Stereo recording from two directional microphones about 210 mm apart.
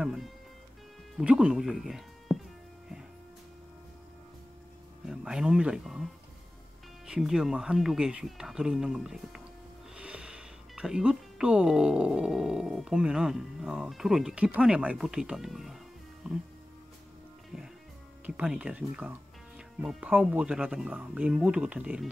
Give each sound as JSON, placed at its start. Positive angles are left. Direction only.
{"t": 0.0, "sound": "speech", "side_deg": 0}
{"t": 5.0, "sound": "speech", "side_deg": -5}
{"t": 7.1, "sound": "speech", "side_deg": 0}
{"t": 18.2, "sound": "speech", "side_deg": -5}